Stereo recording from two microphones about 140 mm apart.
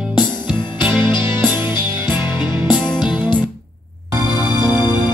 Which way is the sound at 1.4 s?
15° right (ahead or behind).